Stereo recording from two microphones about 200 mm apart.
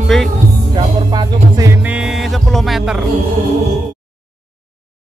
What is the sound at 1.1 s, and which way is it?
Music, 20° right (ahead or behind).